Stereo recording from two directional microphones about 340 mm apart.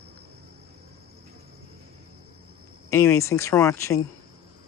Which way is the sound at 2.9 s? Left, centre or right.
Centre.